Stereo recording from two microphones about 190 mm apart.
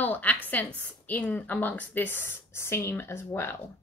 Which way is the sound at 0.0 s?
10° left (ahead or behind).